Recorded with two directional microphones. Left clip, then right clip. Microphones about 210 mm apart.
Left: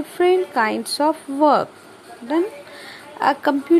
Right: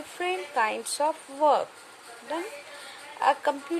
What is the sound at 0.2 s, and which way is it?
A woman's voice, 10° left (ahead or behind).